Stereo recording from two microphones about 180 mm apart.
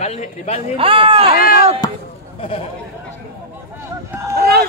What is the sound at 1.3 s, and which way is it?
Speech, 55° left (ahead or behind).